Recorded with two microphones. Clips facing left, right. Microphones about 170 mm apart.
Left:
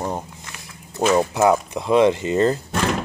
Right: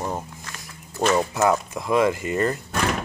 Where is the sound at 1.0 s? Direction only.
5° left (ahead or behind).